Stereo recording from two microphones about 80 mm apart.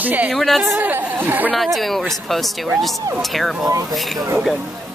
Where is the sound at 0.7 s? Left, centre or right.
Right.